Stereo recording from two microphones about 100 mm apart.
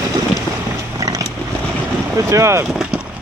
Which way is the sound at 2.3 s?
30° right (ahead or behind).